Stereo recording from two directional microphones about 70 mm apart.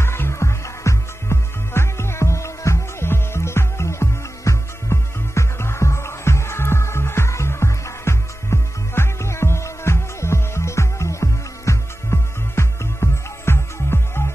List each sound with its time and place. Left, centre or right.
0.0 s music: left